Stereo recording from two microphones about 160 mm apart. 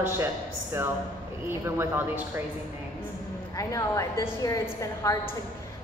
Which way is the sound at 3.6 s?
20° left (ahead or behind).